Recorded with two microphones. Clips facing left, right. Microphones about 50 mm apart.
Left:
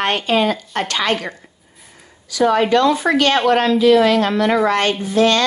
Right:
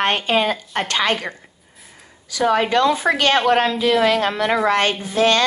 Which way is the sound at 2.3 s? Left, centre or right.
Right.